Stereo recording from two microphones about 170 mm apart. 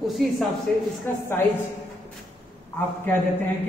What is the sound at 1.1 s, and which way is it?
Speech, 10° left (ahead or behind).